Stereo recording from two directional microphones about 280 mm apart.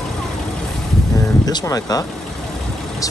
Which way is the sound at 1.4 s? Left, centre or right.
Centre.